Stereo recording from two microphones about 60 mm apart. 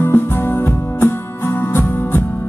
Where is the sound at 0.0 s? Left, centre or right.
Left.